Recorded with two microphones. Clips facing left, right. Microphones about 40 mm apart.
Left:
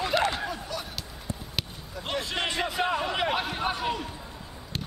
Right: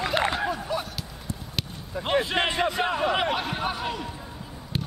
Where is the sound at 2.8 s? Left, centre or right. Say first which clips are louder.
Right 3 dB; centre.